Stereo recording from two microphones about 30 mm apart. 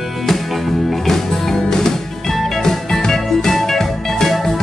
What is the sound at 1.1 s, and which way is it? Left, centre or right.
Music, left.